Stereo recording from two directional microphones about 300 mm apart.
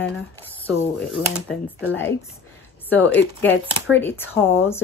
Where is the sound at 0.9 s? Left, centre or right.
Centre.